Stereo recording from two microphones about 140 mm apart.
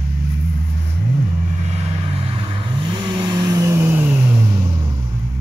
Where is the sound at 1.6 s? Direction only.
50° right (ahead or behind); by 4.3 s 15° right (ahead or behind).